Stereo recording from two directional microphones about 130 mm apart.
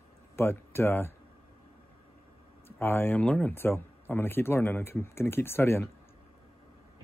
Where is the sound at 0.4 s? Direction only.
15° left (ahead or behind).